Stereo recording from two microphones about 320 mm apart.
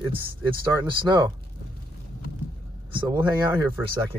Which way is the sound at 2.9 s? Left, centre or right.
Centre.